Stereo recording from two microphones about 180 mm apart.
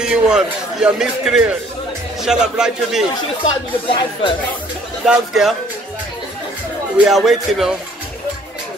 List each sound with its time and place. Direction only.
0.0 s speech: 5° right (ahead or behind)
3.9 s speech: 30° left (ahead or behind)
5.0 s speech: 5° right (ahead or behind)
7.1 s speech: centre (ahead or behind)